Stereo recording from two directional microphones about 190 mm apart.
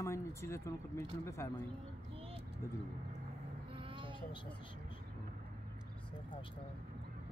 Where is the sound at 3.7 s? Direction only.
25° right (ahead or behind).